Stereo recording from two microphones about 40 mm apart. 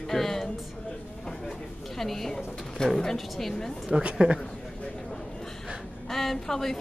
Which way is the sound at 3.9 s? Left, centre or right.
Right.